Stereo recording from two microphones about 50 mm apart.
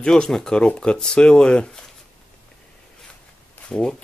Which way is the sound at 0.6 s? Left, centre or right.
Left.